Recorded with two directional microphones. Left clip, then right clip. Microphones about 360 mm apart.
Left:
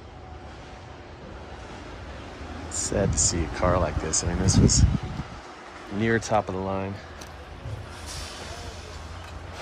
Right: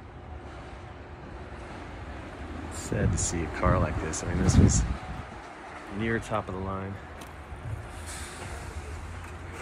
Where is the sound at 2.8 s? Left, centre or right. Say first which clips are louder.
Left 7 dB; centre.